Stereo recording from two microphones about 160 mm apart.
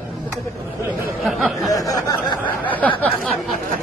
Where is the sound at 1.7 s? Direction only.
20° left (ahead or behind).